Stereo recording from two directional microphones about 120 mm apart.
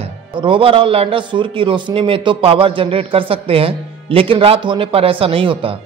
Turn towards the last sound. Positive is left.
turn(degrees=-50)  # may be behind; listen again after turning